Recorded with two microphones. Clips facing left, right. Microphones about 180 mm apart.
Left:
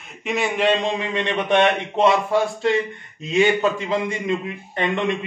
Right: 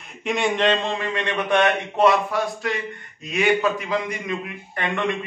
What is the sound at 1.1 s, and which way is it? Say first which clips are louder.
A man's voice: left 2 dB; 20° left (ahead or behind).